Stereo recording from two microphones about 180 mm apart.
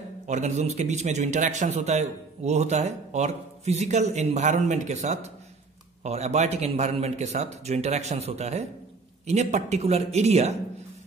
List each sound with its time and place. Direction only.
0.3 s a man's voice: 40° right (ahead or behind)